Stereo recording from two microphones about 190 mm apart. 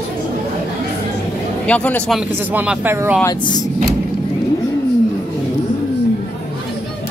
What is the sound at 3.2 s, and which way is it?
Speech, 20° left (ahead or behind).